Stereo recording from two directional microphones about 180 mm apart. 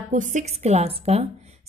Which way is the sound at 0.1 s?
45° right (ahead or behind).